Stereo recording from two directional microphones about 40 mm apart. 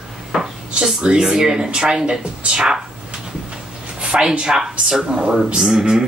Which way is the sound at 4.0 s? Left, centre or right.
Right.